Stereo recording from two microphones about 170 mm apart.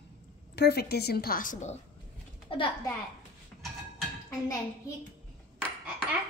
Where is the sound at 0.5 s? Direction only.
70° left (ahead or behind); by 1.7 s 45° left (ahead or behind).